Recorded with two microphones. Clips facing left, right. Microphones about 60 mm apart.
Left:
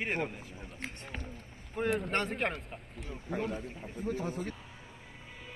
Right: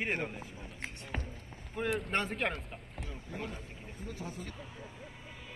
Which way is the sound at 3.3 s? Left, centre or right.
Left.